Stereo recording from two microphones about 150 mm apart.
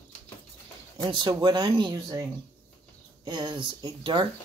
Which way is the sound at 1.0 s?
30° right (ahead or behind).